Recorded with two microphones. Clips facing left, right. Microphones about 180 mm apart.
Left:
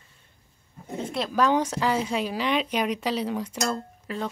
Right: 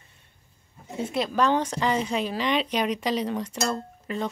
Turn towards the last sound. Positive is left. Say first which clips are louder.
# right 1 dB
turn(degrees=0)  # may be behind; listen again after turning